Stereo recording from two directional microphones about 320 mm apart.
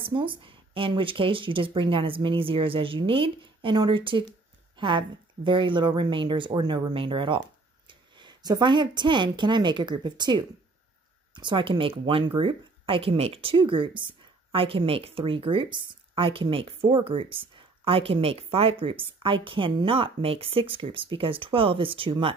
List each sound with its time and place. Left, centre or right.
0.0 s speech: centre